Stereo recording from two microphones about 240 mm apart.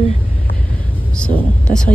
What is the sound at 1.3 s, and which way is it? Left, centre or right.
Speech, right.